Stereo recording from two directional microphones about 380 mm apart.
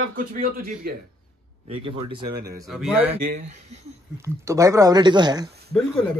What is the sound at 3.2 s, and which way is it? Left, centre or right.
Speech, centre.